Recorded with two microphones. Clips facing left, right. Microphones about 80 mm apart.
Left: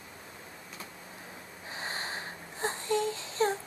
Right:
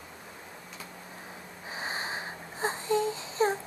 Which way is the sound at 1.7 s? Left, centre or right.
Centre.